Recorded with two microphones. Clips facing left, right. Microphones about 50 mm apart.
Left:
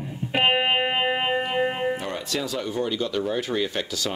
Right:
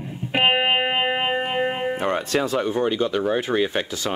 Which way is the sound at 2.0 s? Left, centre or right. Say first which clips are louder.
Right 7 dB; right.